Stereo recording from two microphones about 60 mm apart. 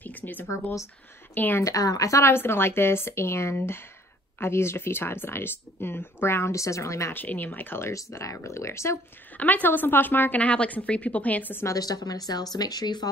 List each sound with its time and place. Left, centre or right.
0.0 s speech: left
1.6 s speech: left
2.2 s a woman's voice: left
7.1 s a woman's voice: left
8.2 s speech: left
9.4 s a woman's voice: left
10.4 s a woman's voice: left
11.6 s speech: left